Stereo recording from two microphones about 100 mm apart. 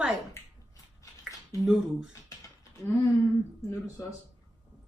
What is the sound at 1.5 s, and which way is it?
Speech, 5° right (ahead or behind).